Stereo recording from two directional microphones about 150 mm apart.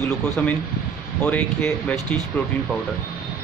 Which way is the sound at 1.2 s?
10° left (ahead or behind).